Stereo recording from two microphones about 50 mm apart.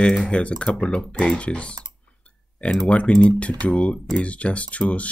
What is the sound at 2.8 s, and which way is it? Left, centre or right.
Speech, left.